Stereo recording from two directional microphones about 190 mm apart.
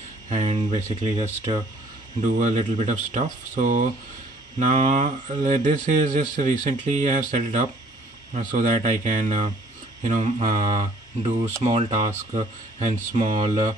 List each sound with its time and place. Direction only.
0.3 s speech: 40° right (ahead or behind)
1.5 s speech: 25° right (ahead or behind)
2.2 s speech: 40° right (ahead or behind)